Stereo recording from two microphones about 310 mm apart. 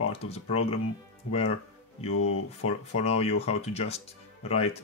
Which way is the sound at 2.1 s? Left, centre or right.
Left.